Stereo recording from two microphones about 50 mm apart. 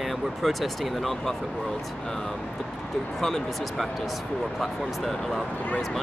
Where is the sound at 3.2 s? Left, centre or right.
Centre.